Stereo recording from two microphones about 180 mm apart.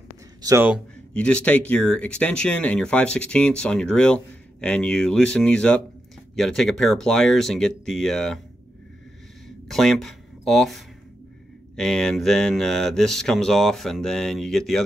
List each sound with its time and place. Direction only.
0.4 s speech: 20° right (ahead or behind)
1.1 s speech: 5° left (ahead or behind)
9.7 s speech: centre (ahead or behind)